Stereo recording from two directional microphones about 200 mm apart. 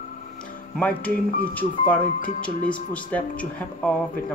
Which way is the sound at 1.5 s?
10° left (ahead or behind).